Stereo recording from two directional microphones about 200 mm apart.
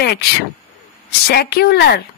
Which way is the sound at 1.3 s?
50° left (ahead or behind).